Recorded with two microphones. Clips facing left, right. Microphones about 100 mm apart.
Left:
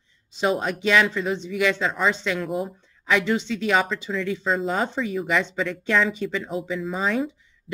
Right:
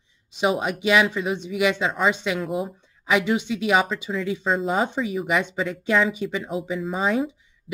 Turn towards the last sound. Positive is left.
turn(degrees=-5)  # may be behind; listen again after turning